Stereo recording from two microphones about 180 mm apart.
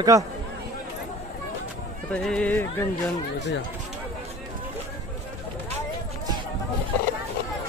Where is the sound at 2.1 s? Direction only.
5° left (ahead or behind).